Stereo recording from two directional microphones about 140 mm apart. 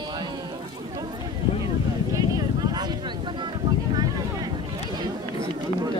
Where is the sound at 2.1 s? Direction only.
25° right (ahead or behind).